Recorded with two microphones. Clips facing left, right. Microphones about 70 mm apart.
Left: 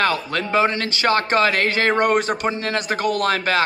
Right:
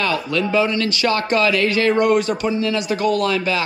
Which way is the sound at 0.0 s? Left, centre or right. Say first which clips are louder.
Right 1 dB; left.